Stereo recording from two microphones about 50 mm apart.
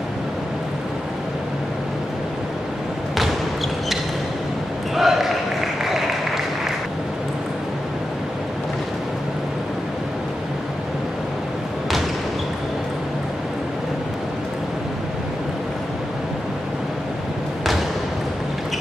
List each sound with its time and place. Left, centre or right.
4.9 s basketball bounce: centre
5.9 s applause: centre